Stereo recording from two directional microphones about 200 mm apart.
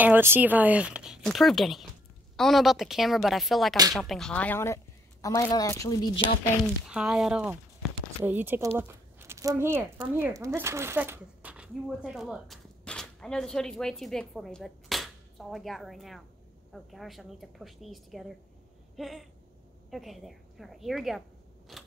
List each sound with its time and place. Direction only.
0.0 s a woman's voice: 10° right (ahead or behind); by 6.1 s 15° left (ahead or behind)
6.9 s speech: 5° right (ahead or behind)
21.7 s biting: centre (ahead or behind)